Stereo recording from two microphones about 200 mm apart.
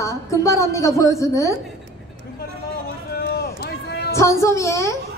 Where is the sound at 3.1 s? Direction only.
50° left (ahead or behind).